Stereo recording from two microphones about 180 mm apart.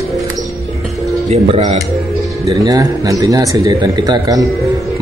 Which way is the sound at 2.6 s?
20° right (ahead or behind).